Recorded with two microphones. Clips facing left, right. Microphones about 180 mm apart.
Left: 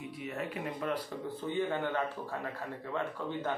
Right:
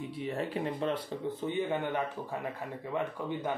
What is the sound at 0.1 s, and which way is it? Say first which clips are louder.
A man's voice: right 5 dB; 30° right (ahead or behind).